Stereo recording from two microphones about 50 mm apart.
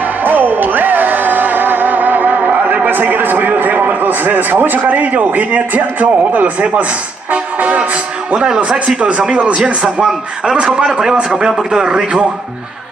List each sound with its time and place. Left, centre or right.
0.2 s music: right
8.3 s a man's voice: right